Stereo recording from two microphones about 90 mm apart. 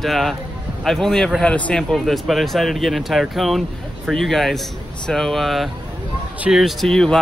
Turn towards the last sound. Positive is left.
turn(degrees=5)  # may be behind; listen again after turning